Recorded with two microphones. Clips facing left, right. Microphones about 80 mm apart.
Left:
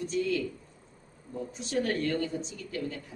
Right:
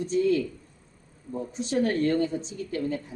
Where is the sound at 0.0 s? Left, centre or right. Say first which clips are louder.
Right 6 dB; right.